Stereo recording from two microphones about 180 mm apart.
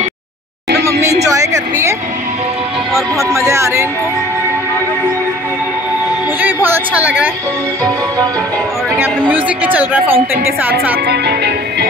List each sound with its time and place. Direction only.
1.2 s speech: 15° right (ahead or behind)
3.2 s speech: 15° right (ahead or behind)
6.4 s a woman's voice: 10° right (ahead or behind)
8.9 s speech: 10° right (ahead or behind)
11.1 s music: 65° right (ahead or behind)